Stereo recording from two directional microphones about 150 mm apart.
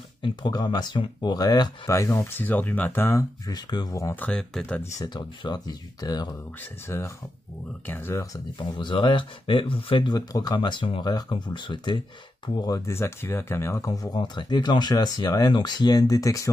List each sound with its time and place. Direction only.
0.2 s speech: 30° left (ahead or behind); by 4.8 s 5° left (ahead or behind)
4.9 s speech: 30° left (ahead or behind)
8.5 s speech: 30° left (ahead or behind)